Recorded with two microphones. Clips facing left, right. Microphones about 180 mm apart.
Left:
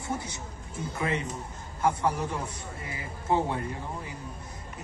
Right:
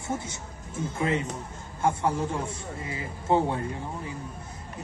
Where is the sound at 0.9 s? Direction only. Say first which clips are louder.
Right 3 dB; 25° right (ahead or behind).